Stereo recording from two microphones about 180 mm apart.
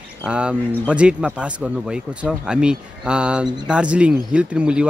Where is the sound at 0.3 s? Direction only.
5° right (ahead or behind).